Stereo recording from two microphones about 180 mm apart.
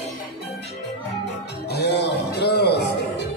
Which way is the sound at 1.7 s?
65° left (ahead or behind).